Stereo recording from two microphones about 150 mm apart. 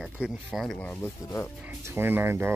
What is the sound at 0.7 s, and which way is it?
Speech, 15° left (ahead or behind).